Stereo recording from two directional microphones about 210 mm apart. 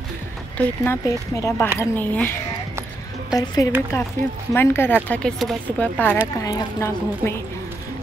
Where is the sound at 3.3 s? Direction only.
20° left (ahead or behind).